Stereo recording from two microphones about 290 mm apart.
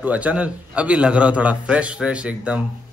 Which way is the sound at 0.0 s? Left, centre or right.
Centre.